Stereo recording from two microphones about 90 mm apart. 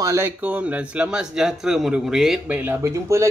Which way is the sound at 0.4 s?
15° right (ahead or behind).